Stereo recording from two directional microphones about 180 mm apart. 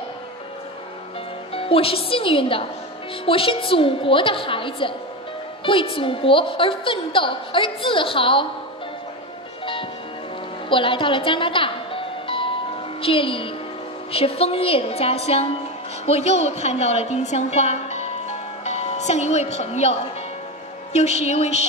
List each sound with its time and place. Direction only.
1.5 s a woman's voice: 30° left (ahead or behind)
10.7 s music: 30° left (ahead or behind)
13.0 s a woman's voice: 30° left (ahead or behind)